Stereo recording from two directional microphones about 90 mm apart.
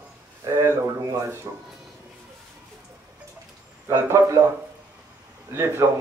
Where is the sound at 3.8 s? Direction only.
35° right (ahead or behind).